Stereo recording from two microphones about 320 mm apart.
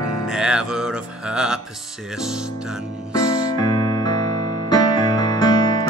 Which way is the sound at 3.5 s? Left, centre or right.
Centre.